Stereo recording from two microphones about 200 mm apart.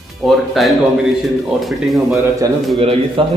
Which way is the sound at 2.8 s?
30° right (ahead or behind).